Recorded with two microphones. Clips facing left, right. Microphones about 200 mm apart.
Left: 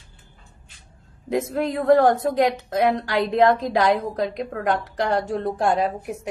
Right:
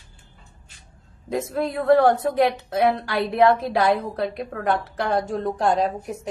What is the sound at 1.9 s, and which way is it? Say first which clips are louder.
A woman's voice: even; 15° left (ahead or behind).